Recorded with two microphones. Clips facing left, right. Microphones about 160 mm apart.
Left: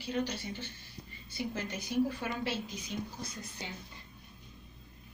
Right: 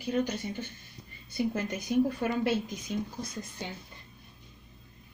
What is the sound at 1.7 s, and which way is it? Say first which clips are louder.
A woman's voice: right 2 dB; 50° right (ahead or behind).